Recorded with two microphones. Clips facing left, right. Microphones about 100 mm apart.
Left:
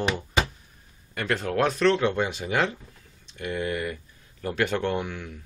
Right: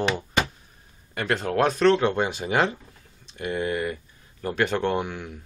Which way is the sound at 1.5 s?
20° right (ahead or behind).